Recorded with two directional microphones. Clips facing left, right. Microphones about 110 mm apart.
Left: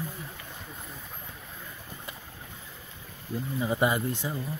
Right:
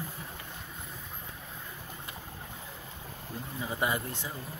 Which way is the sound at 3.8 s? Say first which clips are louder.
Left 3 dB; 20° left (ahead or behind).